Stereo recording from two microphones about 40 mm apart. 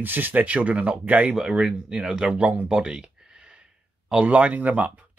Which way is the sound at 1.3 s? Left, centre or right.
Right.